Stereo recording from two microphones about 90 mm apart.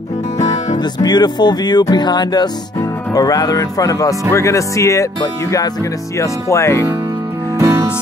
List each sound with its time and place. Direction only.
0.9 s speech: 50° left (ahead or behind)
6.1 s speech: 35° left (ahead or behind)